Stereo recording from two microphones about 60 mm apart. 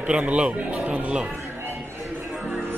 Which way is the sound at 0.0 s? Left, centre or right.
Right.